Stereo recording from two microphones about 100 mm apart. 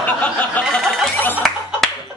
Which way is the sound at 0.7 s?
Centre (ahead or behind).